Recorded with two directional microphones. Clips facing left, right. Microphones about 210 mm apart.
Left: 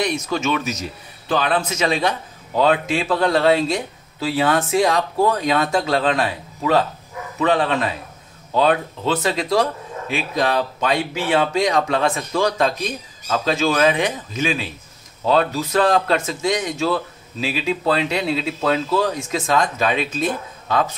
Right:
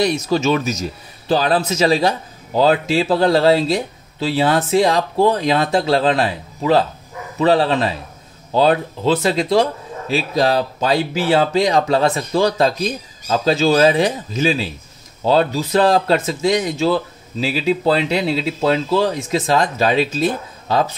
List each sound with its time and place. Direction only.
0.0 s speech: 35° right (ahead or behind)